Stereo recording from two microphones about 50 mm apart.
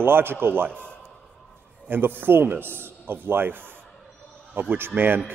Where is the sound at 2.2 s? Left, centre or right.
Right.